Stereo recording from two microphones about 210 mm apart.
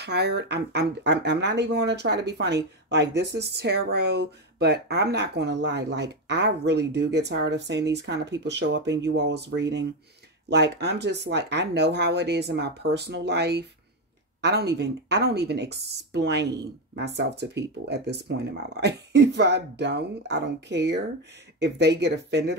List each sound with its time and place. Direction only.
0.0 s speech: 50° right (ahead or behind)